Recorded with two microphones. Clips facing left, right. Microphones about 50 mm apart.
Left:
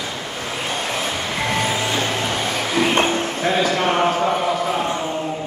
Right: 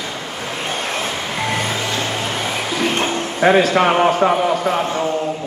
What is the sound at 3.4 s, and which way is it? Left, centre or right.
Speech, right.